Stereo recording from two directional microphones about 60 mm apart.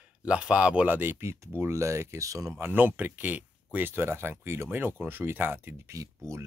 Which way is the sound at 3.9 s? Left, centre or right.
Right.